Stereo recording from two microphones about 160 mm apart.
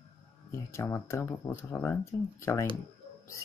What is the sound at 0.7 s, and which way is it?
Speech, 15° left (ahead or behind).